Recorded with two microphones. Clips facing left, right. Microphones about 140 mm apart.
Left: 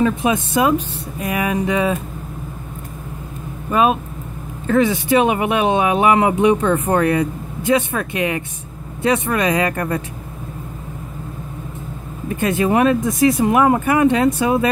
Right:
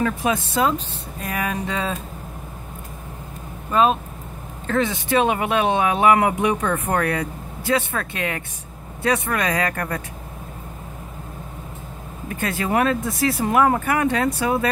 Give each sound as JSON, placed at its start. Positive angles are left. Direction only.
{"t": 0.0, "sound": "speech", "side_deg": 20}
{"t": 3.7, "sound": "speech", "side_deg": 10}
{"t": 12.4, "sound": "speech", "side_deg": 20}